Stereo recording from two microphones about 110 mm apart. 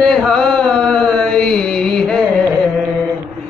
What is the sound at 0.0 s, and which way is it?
Music, 5° left (ahead or behind).